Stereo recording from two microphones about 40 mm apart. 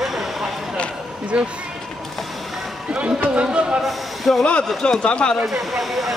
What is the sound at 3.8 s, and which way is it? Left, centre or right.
Speech, centre.